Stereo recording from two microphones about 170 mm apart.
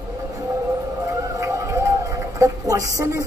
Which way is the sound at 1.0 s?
20° right (ahead or behind).